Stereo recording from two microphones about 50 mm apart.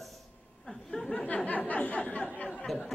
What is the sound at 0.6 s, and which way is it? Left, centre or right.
Speech, centre.